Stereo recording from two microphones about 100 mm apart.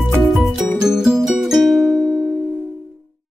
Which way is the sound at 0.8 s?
5° right (ahead or behind).